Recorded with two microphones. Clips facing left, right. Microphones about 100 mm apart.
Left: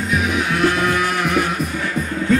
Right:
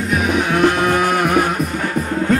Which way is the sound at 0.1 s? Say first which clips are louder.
Right 3 dB; 50° right (ahead or behind).